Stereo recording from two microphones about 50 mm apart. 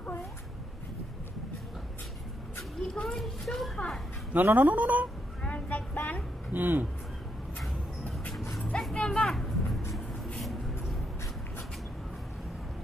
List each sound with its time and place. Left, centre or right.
2.9 s a child's voice: centre
4.3 s speech: right
5.4 s vehicle: left
6.5 s speech: right
8.9 s a sound: centre
10.4 s vehicle: centre